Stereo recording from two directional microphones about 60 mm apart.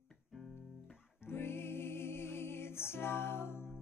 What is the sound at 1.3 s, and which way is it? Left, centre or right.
Music, left.